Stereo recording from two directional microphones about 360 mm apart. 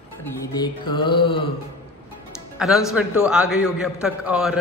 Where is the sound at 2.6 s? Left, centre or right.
Centre.